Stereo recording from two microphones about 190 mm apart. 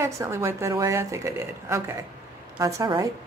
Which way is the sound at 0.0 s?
15° right (ahead or behind).